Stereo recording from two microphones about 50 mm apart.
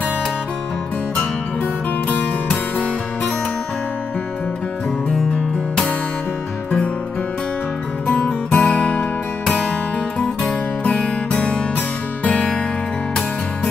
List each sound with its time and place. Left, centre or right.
2.0 s music: left
8.1 s music: left
10.8 s music: left